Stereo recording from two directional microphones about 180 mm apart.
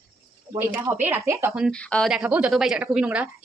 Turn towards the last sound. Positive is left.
turn(degrees=-5)  # may be behind; listen again after turning